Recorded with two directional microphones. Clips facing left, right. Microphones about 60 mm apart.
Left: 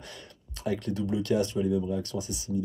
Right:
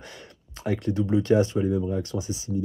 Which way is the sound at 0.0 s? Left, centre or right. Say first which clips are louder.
Right 2 dB; right.